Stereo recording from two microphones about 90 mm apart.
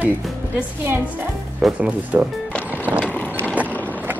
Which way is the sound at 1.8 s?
15° right (ahead or behind).